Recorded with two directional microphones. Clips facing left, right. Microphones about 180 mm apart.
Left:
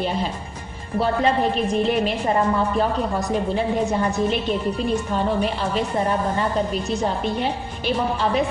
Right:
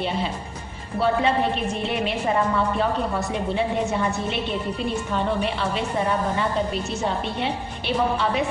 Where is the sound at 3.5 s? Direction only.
40° left (ahead or behind).